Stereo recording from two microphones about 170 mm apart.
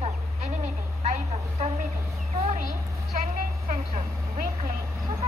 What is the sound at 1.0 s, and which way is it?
Vehicle, 45° right (ahead or behind).